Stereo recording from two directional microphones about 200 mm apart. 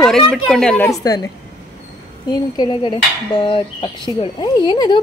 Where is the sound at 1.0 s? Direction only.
20° left (ahead or behind).